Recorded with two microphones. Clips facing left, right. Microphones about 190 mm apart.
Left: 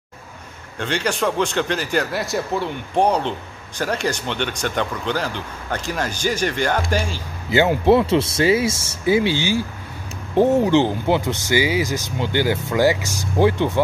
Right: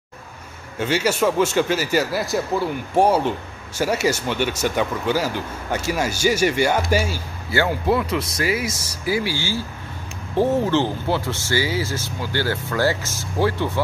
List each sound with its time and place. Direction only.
0.7 s a man's voice: 5° right (ahead or behind)
7.4 s speech: 20° left (ahead or behind)